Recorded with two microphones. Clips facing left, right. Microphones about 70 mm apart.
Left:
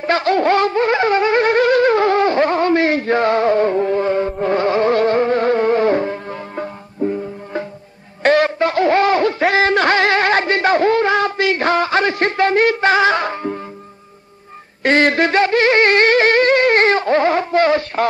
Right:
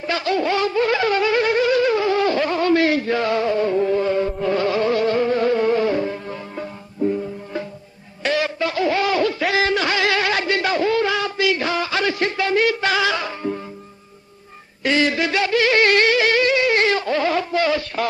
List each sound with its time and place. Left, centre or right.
0.0 s music: left
8.2 s music: left
14.8 s a sound: left